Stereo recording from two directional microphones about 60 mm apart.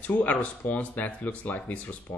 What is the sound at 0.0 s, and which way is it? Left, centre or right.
Speech, left.